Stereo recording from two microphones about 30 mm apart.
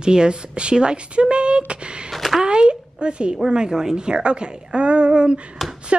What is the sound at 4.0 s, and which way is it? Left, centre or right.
A woman's voice, right.